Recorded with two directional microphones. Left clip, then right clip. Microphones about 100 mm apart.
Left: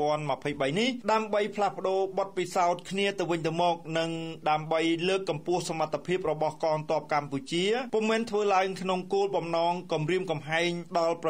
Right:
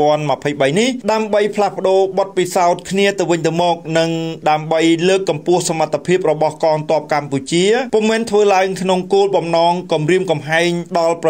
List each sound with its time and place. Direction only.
0.0 s a man's voice: 25° right (ahead or behind)